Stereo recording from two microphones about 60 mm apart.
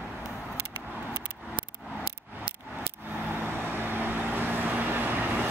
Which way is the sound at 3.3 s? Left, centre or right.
Right.